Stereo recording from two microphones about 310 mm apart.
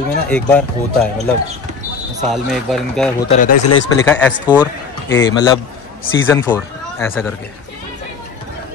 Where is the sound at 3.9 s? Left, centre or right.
Centre.